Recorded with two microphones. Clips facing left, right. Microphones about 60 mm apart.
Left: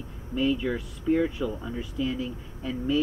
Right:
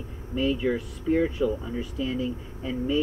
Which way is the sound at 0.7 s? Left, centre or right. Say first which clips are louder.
Right 1 dB; centre.